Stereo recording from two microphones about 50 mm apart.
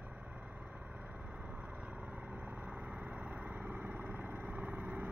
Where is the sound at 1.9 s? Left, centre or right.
Right.